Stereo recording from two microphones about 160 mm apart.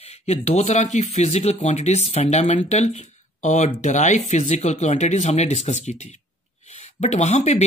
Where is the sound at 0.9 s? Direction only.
45° left (ahead or behind).